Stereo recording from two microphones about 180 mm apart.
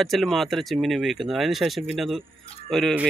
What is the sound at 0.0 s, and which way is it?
A man's voice, centre (ahead or behind).